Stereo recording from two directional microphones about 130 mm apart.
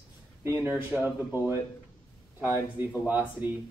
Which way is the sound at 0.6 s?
10° right (ahead or behind).